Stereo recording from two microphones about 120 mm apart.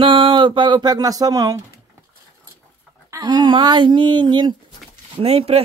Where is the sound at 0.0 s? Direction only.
45° right (ahead or behind).